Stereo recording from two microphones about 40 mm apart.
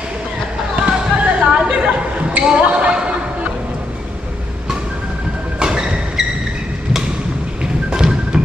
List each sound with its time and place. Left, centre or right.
0.7 s basketball bounce: right
2.4 s a sound: right
5.6 s vehicle: centre
7.9 s music: centre